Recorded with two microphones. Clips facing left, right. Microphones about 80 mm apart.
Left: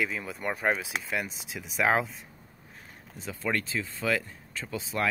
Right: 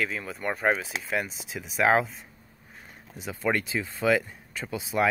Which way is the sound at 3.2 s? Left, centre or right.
Centre.